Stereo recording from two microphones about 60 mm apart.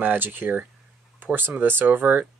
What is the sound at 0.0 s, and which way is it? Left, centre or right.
Speech, right.